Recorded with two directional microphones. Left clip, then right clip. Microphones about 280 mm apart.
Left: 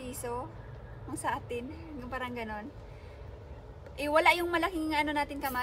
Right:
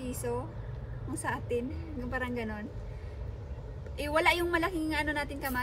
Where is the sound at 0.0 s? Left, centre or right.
Centre.